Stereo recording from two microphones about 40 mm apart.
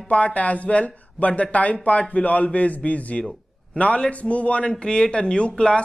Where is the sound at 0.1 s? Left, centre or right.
Left.